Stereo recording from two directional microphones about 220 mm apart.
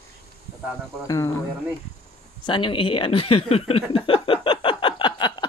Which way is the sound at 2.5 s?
25° left (ahead or behind).